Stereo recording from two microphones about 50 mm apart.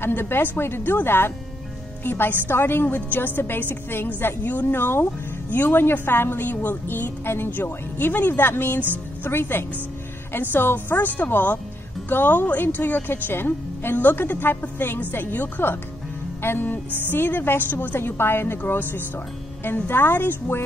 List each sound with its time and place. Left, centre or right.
0.0 s a woman's voice: left
7.6 s a woman's voice: left